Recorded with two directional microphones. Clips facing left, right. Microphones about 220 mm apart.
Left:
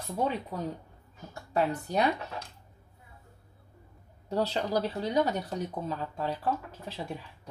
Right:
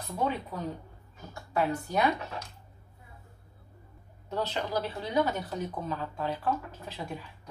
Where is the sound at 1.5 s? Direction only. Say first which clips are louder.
Left 1 dB; 35° left (ahead or behind).